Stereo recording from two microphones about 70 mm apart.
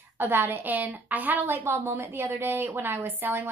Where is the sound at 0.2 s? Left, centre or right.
Right.